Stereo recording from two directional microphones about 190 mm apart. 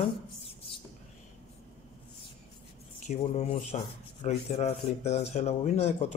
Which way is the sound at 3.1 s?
35° left (ahead or behind).